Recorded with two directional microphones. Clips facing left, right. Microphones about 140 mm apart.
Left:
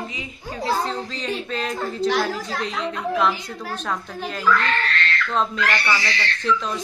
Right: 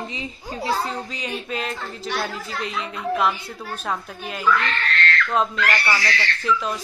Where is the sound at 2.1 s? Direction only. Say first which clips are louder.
Left 5 dB; 90° left.